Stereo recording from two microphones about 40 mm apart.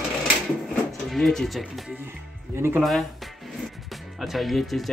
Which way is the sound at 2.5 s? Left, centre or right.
Right.